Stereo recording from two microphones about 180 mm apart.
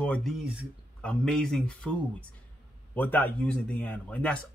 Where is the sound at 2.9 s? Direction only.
10° left (ahead or behind).